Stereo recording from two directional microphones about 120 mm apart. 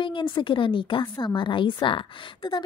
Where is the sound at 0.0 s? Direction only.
40° left (ahead or behind).